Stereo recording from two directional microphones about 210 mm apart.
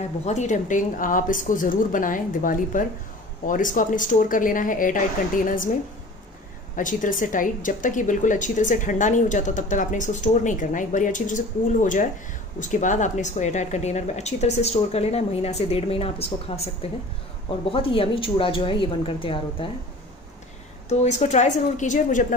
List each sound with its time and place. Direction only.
0.2 s a woman's voice: 35° left (ahead or behind)
6.8 s a woman's voice: 40° left (ahead or behind)
20.9 s a woman's voice: 35° left (ahead or behind)